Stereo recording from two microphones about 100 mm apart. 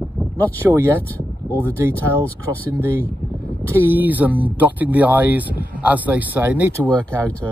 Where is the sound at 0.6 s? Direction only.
25° right (ahead or behind).